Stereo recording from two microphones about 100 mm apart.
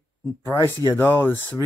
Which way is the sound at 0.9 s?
20° left (ahead or behind).